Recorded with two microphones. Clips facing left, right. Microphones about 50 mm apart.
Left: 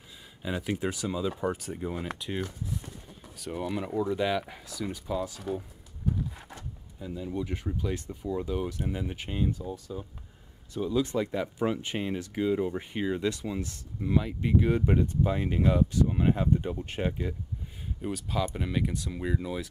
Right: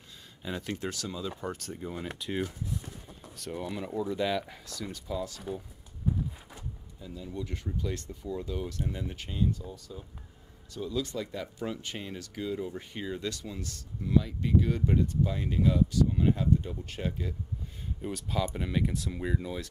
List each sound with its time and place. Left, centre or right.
0.4 s speech: centre
3.6 s speech: centre
7.0 s speech: left
18.0 s speech: centre